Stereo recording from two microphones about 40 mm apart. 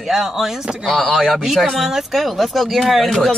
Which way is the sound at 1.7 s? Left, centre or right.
Centre.